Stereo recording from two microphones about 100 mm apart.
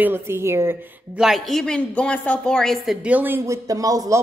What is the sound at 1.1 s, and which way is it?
A man's voice, 5° right (ahead or behind).